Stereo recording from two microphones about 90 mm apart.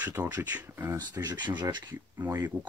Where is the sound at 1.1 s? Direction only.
50° right (ahead or behind).